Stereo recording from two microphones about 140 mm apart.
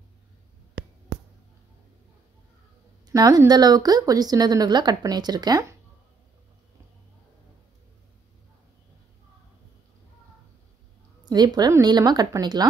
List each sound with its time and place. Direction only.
3.1 s a woman's voice: 25° right (ahead or behind)
11.2 s a woman's voice: 30° right (ahead or behind)